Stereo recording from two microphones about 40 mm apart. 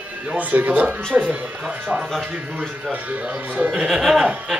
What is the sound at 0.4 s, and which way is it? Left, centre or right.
Speech, right.